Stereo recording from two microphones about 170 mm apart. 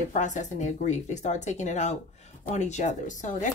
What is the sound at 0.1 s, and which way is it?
Speech, 45° left (ahead or behind).